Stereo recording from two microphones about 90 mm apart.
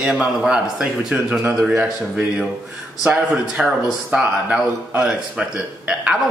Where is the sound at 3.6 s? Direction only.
10° right (ahead or behind).